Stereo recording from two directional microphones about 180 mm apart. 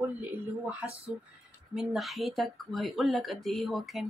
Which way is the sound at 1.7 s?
Centre (ahead or behind).